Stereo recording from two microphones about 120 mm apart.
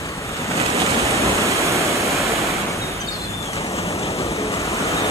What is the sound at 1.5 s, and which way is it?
Waves, 25° right (ahead or behind).